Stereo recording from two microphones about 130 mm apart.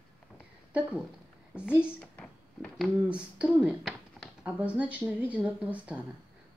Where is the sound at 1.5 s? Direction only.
15° left (ahead or behind).